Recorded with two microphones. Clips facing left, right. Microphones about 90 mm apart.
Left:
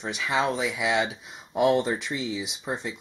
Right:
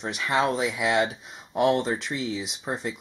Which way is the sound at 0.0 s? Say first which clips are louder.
Right 1 dB; centre (ahead or behind).